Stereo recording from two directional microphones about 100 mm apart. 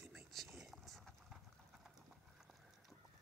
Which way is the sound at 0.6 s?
Centre (ahead or behind).